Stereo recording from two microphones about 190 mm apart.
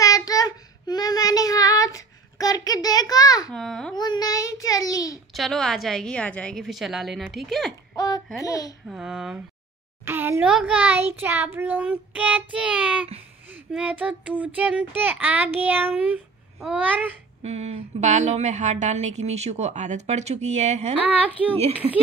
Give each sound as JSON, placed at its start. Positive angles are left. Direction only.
{"t": 0.0, "sound": "child singing", "side_deg": 20}
{"t": 3.5, "sound": "a woman's voice", "side_deg": 0}
{"t": 3.9, "sound": "child singing", "side_deg": 20}
{"t": 5.3, "sound": "a woman's voice", "side_deg": 0}
{"t": 7.9, "sound": "a sound", "side_deg": 20}
{"t": 8.4, "sound": "a child's voice", "side_deg": 15}
{"t": 8.8, "sound": "a woman's voice", "side_deg": -5}
{"t": 17.4, "sound": "a woman's voice", "side_deg": -35}